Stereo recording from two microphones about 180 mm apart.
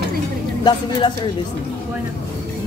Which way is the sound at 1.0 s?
25° left (ahead or behind).